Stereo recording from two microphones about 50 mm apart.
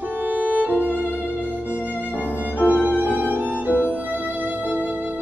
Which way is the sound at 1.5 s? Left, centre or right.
Left.